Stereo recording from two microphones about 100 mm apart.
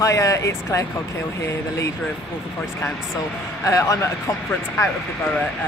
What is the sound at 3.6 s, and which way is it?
Speech, 35° left (ahead or behind).